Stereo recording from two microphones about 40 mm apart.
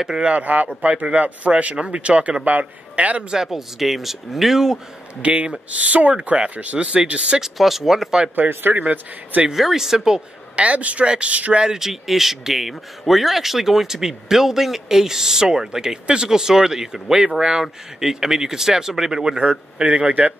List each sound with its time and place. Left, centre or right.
0.2 s speech: right
3.2 s a man's voice: right
3.4 s speech: centre
5.2 s speech: right
7.5 s speech: centre
8.5 s a man's voice: right
8.9 s speech: right
9.5 s speech: centre
10.5 s speech: right
11.6 s a man's voice: centre; by 20.3 s right